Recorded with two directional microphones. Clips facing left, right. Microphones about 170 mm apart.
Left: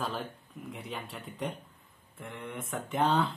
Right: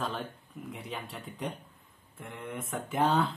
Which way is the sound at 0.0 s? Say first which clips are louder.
Even; centre (ahead or behind).